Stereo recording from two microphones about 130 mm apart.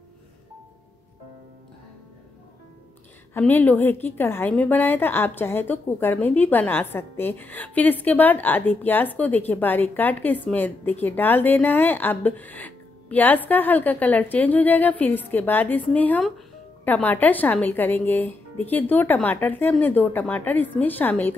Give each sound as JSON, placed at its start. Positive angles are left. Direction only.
{"t": 3.3, "sound": "a woman's voice", "side_deg": 15}